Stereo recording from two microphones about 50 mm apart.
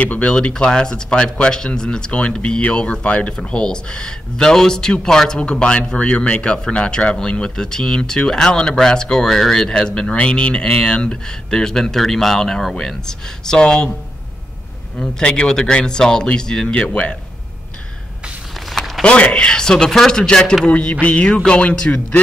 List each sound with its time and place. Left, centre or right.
0.0 s speech: left
15.0 s speech: centre
18.7 s a sound: centre
19.0 s speech: left
20.6 s speech: left